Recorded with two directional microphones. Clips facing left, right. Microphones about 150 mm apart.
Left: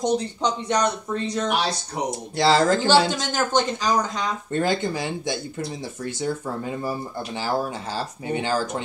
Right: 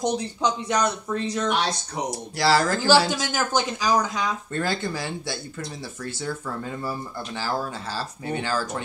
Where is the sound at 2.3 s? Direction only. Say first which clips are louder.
Left 3 dB; 25° left (ahead or behind).